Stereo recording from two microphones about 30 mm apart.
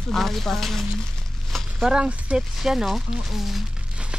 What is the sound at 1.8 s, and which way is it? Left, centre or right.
Speech, right.